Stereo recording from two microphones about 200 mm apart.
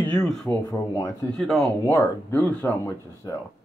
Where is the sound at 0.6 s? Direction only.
15° left (ahead or behind).